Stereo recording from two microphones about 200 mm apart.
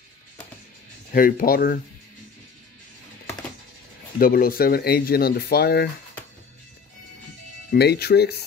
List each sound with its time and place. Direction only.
1.1 s speech: 45° left (ahead or behind)
4.2 s speech: 45° left (ahead or behind)
7.7 s speech: 55° left (ahead or behind)